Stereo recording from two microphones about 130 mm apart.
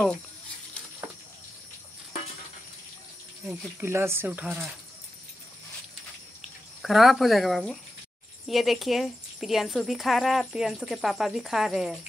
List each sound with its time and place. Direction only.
3.4 s speech: 20° right (ahead or behind)
6.8 s speech: centre (ahead or behind)